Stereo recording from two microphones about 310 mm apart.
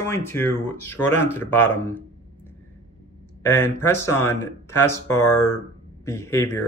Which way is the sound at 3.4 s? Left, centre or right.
Centre.